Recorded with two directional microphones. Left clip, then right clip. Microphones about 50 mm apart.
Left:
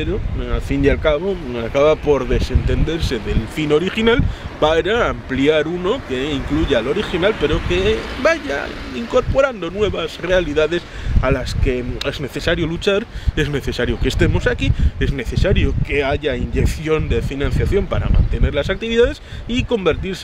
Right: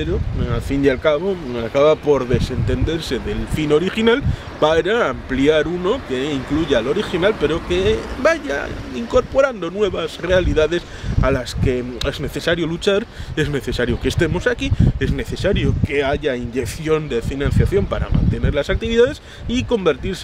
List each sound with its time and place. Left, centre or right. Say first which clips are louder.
0.0 s speech: even; centre